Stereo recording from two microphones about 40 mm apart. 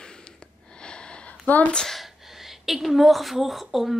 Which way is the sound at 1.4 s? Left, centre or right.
Left.